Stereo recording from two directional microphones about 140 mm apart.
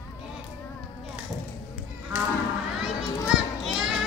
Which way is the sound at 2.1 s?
10° right (ahead or behind).